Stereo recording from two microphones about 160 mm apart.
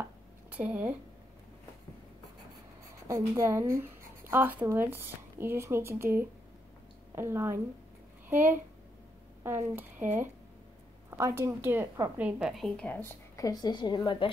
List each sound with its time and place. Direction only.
0.5 s speech: 10° right (ahead or behind)
3.1 s a woman's voice: 20° right (ahead or behind); by 13.1 s 10° left (ahead or behind)
13.4 s a woman's voice: 25° left (ahead or behind)